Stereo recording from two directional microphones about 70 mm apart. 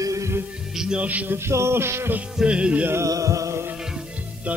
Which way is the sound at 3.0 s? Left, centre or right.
Right.